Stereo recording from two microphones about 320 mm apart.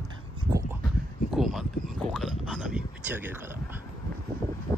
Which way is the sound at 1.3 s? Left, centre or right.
Centre.